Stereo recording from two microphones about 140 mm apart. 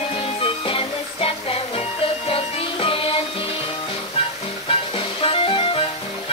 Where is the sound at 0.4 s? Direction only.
40° left (ahead or behind).